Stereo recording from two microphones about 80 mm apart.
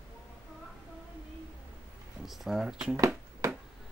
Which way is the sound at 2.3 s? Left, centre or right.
Centre.